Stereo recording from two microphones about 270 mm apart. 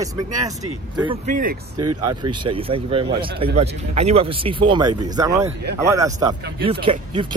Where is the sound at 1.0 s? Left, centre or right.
Right.